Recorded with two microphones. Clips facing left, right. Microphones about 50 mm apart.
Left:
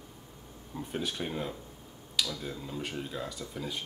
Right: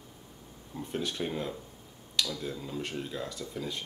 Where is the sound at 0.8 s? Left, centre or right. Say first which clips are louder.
Right 1 dB; centre.